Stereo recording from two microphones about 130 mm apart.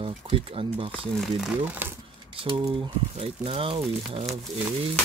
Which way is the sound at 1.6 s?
15° right (ahead or behind).